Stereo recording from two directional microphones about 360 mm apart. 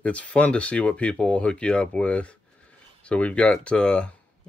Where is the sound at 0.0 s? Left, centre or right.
Centre.